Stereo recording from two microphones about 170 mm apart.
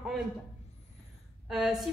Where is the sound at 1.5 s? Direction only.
Centre (ahead or behind).